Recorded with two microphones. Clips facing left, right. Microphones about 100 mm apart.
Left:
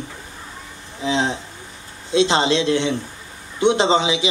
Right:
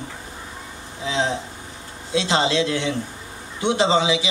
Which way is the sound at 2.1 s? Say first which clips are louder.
Left 3 dB; 25° left (ahead or behind).